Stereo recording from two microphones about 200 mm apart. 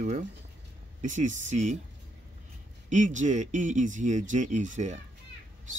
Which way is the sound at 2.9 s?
40° right (ahead or behind).